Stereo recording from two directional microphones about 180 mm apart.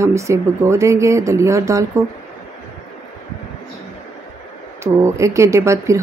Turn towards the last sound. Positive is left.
turn(degrees=-15)  # may be behind; listen again after turning